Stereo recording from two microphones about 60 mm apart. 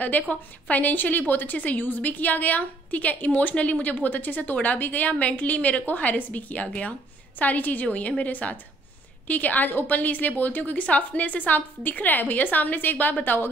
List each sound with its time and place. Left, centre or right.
0.0 s a woman's voice: left